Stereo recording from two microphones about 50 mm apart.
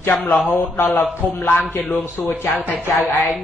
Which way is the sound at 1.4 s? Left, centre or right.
Left.